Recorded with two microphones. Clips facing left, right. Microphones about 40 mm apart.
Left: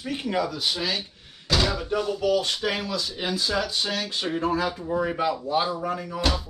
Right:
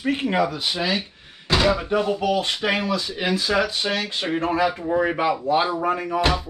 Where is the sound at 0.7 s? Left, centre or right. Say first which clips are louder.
Right 3 dB; right.